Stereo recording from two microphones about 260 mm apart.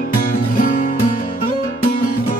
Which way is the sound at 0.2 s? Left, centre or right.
Left.